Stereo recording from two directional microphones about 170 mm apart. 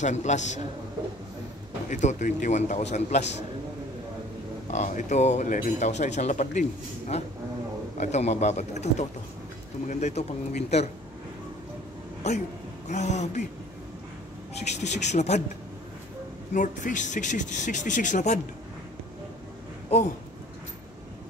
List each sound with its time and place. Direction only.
0.0 s speech: 45° left (ahead or behind)
1.9 s speech: 45° left (ahead or behind)
4.6 s speech: 45° left (ahead or behind)
12.8 s speech: 45° left (ahead or behind)
14.5 s speech: 40° left (ahead or behind)
16.5 s speech: 50° left (ahead or behind)